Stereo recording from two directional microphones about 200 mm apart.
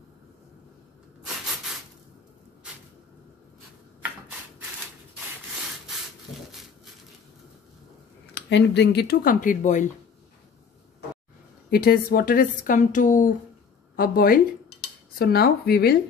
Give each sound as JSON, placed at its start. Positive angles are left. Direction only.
{"t": 8.4, "sound": "speech", "side_deg": 60}
{"t": 11.7, "sound": "speech", "side_deg": 50}